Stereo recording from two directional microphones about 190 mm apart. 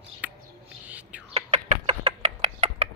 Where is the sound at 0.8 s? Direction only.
5° right (ahead or behind).